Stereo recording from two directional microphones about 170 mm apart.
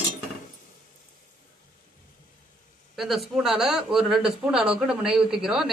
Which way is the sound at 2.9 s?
Centre (ahead or behind).